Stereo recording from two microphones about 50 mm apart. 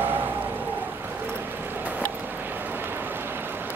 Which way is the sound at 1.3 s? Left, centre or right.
Right.